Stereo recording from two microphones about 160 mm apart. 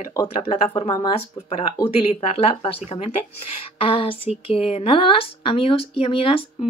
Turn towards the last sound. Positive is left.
turn(degrees=35)  # may be behind; listen again after turning